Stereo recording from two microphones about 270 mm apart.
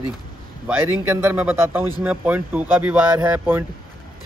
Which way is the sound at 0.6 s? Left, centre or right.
Centre.